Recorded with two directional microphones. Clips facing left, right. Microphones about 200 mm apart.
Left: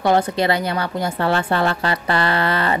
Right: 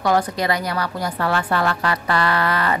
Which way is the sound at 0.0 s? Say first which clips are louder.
Left 2 dB; 25° left (ahead or behind).